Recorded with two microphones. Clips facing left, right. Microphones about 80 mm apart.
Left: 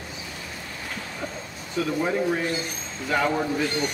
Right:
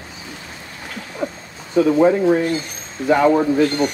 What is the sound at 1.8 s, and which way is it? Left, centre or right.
Speech, right.